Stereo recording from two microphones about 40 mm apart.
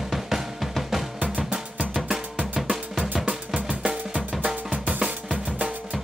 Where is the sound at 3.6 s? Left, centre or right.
Right.